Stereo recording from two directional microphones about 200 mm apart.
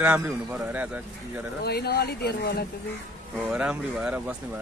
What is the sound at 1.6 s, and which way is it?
Speech, 55° left (ahead or behind).